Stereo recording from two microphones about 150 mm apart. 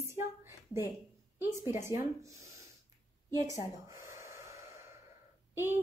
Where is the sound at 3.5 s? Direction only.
20° right (ahead or behind).